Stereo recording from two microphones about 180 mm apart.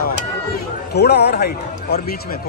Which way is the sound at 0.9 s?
65° left (ahead or behind).